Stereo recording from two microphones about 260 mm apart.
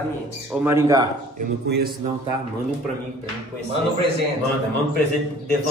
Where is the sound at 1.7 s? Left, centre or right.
Right.